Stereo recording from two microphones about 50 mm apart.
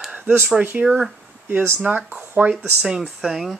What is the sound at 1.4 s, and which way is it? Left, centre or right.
Speech, right.